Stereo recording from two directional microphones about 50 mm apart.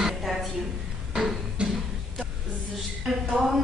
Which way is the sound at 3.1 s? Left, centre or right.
Centre.